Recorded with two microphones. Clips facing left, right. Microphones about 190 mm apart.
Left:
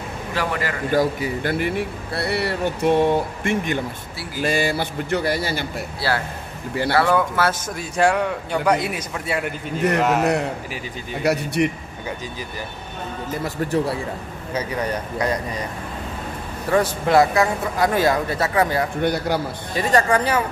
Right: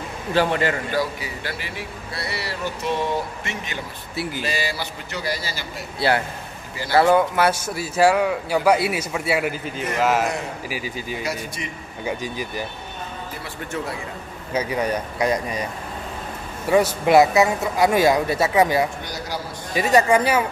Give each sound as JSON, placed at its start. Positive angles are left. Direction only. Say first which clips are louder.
{"t": 0.3, "sound": "a man's voice", "louder": "right 5 dB", "side_deg": -30}
{"t": 0.9, "sound": "speech", "louder": "left 5 dB", "side_deg": 50}
{"t": 5.9, "sound": "a man's voice", "louder": "right 4 dB", "side_deg": -20}
{"t": 6.7, "sound": "speech", "louder": "left 2 dB", "side_deg": 60}
{"t": 7.0, "sound": "a man's voice", "louder": "right 4 dB", "side_deg": -20}
{"t": 11.2, "sound": "speech", "louder": "left 9 dB", "side_deg": 65}
{"t": 13.4, "sound": "a man's voice", "louder": "left 9 dB", "side_deg": 35}
{"t": 14.5, "sound": "a man's voice", "louder": "right 2 dB", "side_deg": -10}
{"t": 16.7, "sound": "a man's voice", "louder": "right 2 dB", "side_deg": -10}
{"t": 19.0, "sound": "speech", "louder": "left 9 dB", "side_deg": 60}
{"t": 19.7, "sound": "a man's voice", "louder": "right 2 dB", "side_deg": -10}